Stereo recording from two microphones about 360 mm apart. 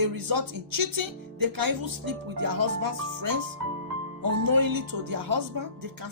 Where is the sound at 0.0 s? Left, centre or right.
Right.